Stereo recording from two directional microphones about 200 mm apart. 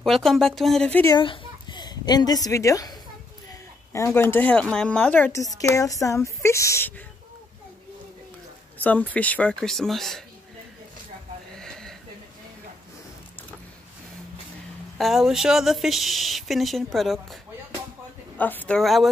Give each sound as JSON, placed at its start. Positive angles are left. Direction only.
{"t": 0.0, "sound": "speech", "side_deg": 0}
{"t": 1.1, "sound": "a child's voice", "side_deg": 25}
{"t": 8.7, "sound": "speech", "side_deg": 5}
{"t": 11.5, "sound": "a sound", "side_deg": 5}
{"t": 15.0, "sound": "speech", "side_deg": 0}
{"t": 18.4, "sound": "speech", "side_deg": 10}